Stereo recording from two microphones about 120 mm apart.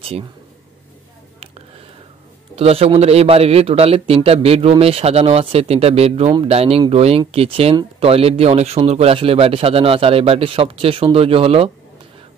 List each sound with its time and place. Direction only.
2.5 s a man's voice: 55° right (ahead or behind)